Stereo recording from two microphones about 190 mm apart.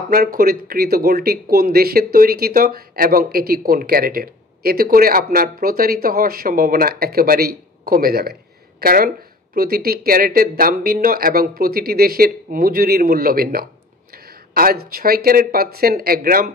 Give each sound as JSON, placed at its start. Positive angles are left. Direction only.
{"t": 0.1, "sound": "speech", "side_deg": -50}